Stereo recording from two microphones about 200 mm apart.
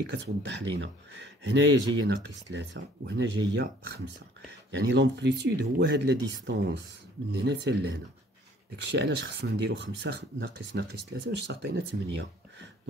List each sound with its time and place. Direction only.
0.1 s speech: 65° right (ahead or behind)
4.6 s speech: 60° right (ahead or behind)